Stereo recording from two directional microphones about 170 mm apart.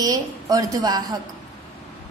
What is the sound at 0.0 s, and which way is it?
A woman's voice, 20° right (ahead or behind).